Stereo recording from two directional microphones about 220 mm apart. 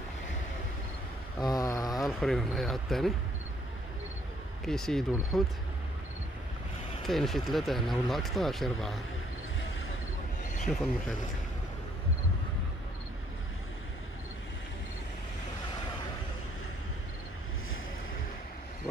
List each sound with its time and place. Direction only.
1.4 s a sound: 15° left (ahead or behind)
2.0 s speech: centre (ahead or behind)
4.6 s speech: centre (ahead or behind)
7.1 s speech: centre (ahead or behind)
10.7 s speech: centre (ahead or behind)